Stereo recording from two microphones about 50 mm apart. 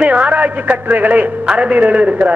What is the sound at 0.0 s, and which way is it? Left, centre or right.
A man's voice, right.